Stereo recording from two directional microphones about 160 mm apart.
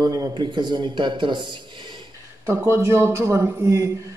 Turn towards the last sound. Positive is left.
turn(degrees=-15)  # may be behind; listen again after turning